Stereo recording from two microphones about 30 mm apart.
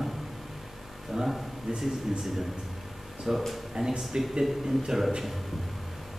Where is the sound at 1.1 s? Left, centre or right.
Centre.